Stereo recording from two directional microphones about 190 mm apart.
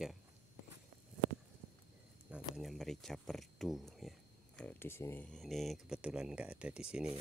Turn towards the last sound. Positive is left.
turn(degrees=-5)  # may be behind; listen again after turning